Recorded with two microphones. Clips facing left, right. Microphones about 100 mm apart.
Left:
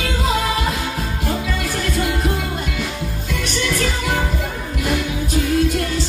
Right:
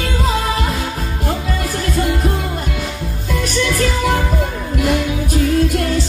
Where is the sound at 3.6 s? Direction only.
45° right (ahead or behind).